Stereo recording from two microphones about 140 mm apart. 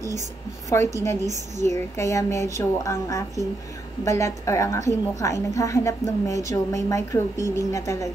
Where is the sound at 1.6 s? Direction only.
20° left (ahead or behind).